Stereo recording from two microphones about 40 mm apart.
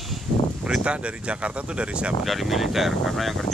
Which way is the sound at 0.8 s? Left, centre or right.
Right.